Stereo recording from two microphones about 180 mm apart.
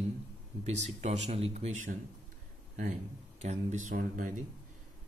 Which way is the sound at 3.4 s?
40° right (ahead or behind).